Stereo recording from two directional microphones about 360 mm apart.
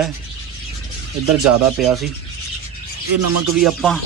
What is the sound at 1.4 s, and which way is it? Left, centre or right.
Speech, centre.